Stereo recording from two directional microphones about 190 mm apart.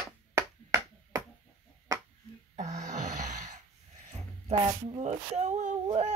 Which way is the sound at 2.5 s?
40° right (ahead or behind).